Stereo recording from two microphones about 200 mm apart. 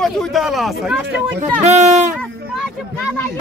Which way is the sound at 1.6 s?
35° right (ahead or behind).